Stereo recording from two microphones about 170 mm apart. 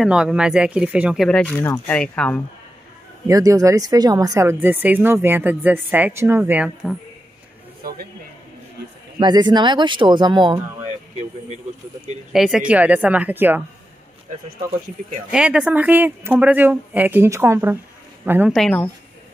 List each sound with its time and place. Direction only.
0.0 s speech: 5° right (ahead or behind)
3.3 s speech: 20° right (ahead or behind)
7.8 s speech: 60° right (ahead or behind)
9.2 s speech: 25° right (ahead or behind)
10.8 s a sound: 45° right (ahead or behind)
12.3 s speech: 5° right (ahead or behind)
15.3 s speech: 5° right (ahead or behind)
18.5 s speech: 5° left (ahead or behind)